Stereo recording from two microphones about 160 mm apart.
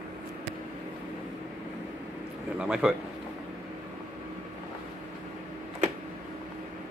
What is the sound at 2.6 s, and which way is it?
Speech, 5° right (ahead or behind).